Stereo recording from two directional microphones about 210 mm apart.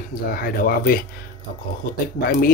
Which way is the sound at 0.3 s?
45° left (ahead or behind).